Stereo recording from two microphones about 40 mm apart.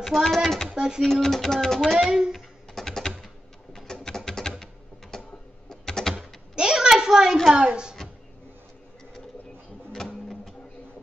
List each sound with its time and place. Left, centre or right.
0.0 s speech: centre
0.7 s speech: right
1.0 s speech: centre
2.0 s speech: centre
2.7 s typing: centre
5.1 s a sound: centre
6.1 s a sound: centre
7.5 s speech: right